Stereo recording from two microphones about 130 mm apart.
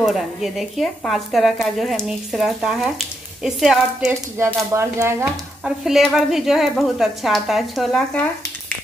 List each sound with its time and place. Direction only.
0.0 s speech: 5° right (ahead or behind)
4.6 s speech: 20° right (ahead or behind)
5.6 s speech: 5° right (ahead or behind)